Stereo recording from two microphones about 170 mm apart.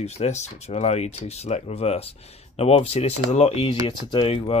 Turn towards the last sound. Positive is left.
turn(degrees=35)  # may be behind; listen again after turning